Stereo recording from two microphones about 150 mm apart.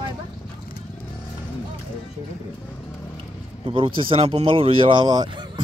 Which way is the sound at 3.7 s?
35° right (ahead or behind).